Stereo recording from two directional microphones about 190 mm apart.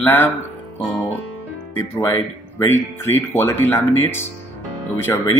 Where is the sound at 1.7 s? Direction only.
15° left (ahead or behind).